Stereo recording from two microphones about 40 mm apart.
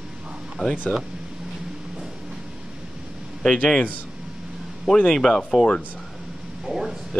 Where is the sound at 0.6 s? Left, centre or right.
Left.